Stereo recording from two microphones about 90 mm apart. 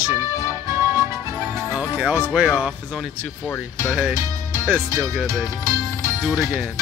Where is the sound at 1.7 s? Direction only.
15° right (ahead or behind).